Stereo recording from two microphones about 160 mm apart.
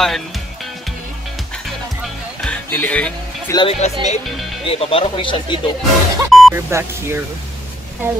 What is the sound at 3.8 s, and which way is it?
Speech, 40° left (ahead or behind).